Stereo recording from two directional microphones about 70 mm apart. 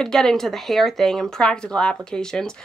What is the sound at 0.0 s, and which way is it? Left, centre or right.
Speech, centre.